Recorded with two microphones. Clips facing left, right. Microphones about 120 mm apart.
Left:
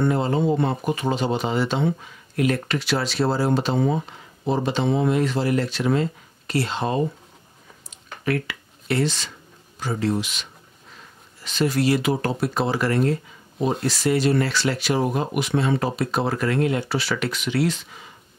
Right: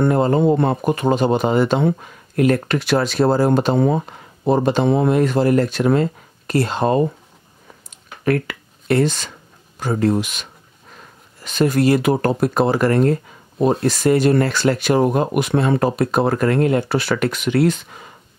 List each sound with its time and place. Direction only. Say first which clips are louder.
0.0 s speech: right 6 dB; 50° right (ahead or behind)
7.9 s a sound: right 6 dB; 50° right (ahead or behind)
9.8 s speech: right 6 dB; 50° right (ahead or behind)